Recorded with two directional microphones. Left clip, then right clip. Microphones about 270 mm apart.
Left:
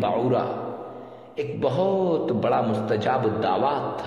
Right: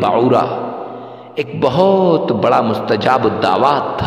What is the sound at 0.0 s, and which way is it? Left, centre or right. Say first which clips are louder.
A man's voice: right 10 dB; right.